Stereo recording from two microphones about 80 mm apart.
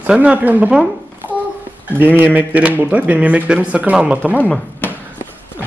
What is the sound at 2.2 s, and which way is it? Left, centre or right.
Speech, centre.